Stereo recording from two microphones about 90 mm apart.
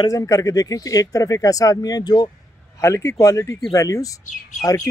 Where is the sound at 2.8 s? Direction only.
30° left (ahead or behind).